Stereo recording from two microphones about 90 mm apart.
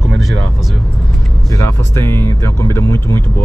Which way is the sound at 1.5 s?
30° left (ahead or behind).